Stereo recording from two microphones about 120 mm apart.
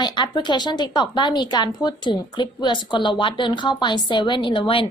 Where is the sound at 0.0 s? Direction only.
40° left (ahead or behind).